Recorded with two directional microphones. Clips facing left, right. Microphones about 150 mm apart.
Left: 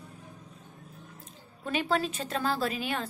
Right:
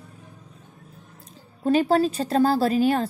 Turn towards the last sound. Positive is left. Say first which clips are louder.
# right 11 dB
turn(degrees=-40)  # may be behind; listen again after turning